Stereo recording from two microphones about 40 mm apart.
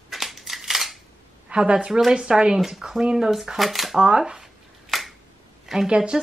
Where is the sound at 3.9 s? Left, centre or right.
Right.